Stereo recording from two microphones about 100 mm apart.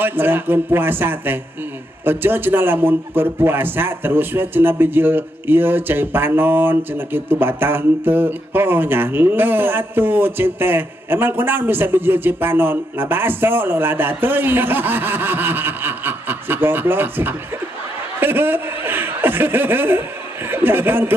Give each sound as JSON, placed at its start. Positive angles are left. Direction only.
{"t": 0.0, "sound": "a man's voice", "side_deg": -20}